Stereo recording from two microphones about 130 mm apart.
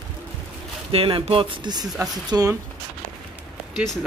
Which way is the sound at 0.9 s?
45° right (ahead or behind).